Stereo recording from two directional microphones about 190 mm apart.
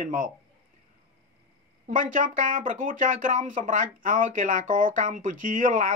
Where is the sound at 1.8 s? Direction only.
45° right (ahead or behind).